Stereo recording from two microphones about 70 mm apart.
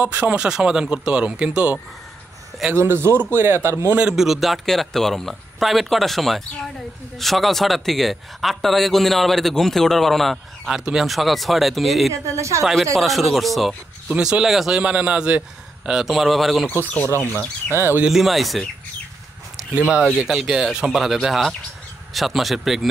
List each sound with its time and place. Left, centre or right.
0.0 s speech: right
0.5 s a man's voice: centre
2.7 s a man's voice: right
4.1 s a man's voice: centre
12.1 s a woman's voice: right
12.9 s a man's voice: centre
14.1 s a man's voice: centre
14.8 s a man's voice: centre
16.8 s speech: left
17.7 s a man's voice: right
18.1 s a man's voice: centre
19.7 s a man's voice: centre
20.2 s a man's voice: centre